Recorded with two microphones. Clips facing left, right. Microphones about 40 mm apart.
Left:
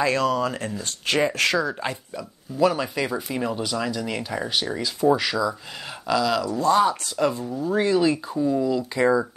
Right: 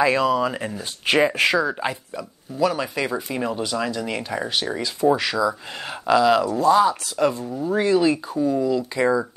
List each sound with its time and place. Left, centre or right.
0.0 s speech: centre
6.0 s speech: centre
6.6 s speech: centre
8.5 s speech: centre